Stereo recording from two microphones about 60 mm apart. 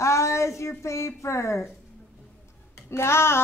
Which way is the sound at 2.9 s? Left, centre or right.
Left.